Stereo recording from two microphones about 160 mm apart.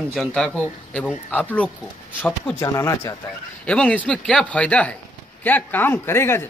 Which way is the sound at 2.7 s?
20° left (ahead or behind).